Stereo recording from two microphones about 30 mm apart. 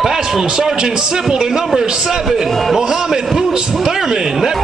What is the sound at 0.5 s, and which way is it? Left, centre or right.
Speech, centre.